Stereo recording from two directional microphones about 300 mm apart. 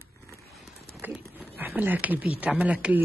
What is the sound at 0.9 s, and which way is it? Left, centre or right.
Horse, centre.